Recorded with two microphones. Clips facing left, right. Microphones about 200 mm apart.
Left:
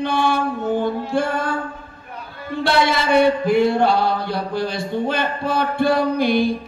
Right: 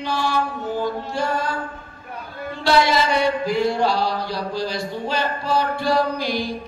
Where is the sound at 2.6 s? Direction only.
55° left (ahead or behind).